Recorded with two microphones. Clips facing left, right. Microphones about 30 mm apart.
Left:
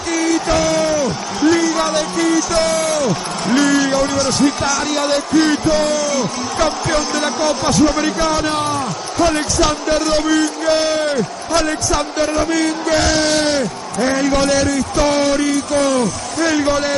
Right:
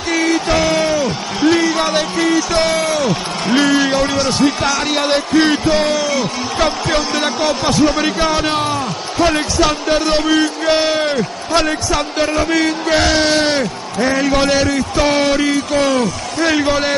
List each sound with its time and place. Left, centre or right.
0.1 s a man's voice: right